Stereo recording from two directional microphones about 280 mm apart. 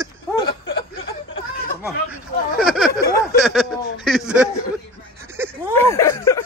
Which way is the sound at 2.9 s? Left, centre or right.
Left.